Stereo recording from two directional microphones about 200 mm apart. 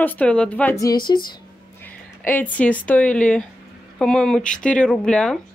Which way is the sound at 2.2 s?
10° left (ahead or behind).